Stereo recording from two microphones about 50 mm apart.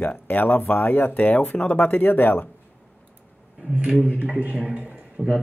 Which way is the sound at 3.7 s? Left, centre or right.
Right.